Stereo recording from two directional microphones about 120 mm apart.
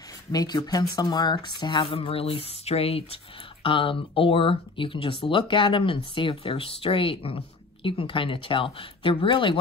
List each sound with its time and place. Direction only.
0.3 s speech: 35° left (ahead or behind)
1.9 s speech: 50° left (ahead or behind)